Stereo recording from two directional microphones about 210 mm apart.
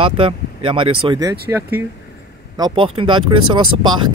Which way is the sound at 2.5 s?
20° right (ahead or behind).